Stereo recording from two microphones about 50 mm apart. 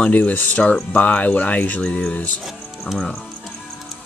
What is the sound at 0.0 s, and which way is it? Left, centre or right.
Speech, left.